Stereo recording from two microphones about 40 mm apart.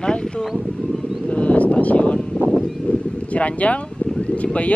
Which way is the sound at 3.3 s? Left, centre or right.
Left.